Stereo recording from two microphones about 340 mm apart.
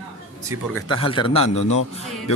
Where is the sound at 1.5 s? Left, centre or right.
Left.